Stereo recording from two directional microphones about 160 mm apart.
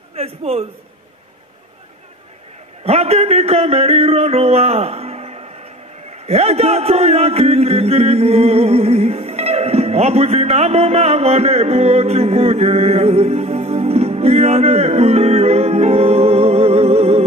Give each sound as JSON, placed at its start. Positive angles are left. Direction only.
{"t": 0.1, "sound": "a sound", "side_deg": -40}
{"t": 2.8, "sound": "music", "side_deg": -40}
{"t": 6.2, "sound": "speech", "side_deg": -40}